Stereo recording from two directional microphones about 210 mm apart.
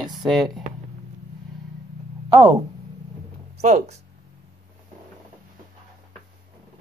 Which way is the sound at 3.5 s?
35° right (ahead or behind).